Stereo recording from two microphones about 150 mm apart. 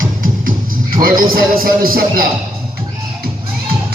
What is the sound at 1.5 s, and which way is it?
Music, 75° right (ahead or behind).